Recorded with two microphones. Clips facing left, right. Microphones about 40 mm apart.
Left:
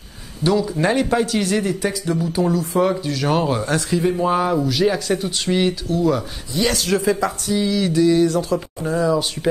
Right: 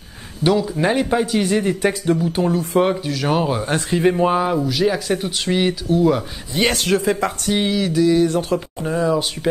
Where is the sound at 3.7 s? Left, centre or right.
Right.